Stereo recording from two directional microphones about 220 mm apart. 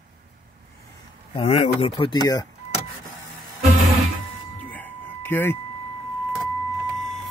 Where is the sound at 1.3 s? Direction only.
25° left (ahead or behind).